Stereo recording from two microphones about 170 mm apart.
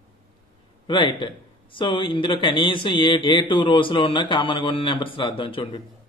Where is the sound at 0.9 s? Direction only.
30° left (ahead or behind).